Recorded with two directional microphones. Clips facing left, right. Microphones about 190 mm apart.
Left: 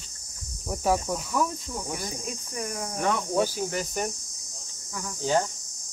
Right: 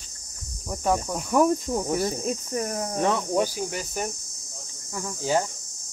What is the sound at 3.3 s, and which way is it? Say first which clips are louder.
Cricket: right 1 dB; 10° right (ahead or behind).